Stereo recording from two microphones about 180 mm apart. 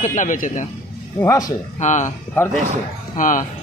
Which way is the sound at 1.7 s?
40° left (ahead or behind).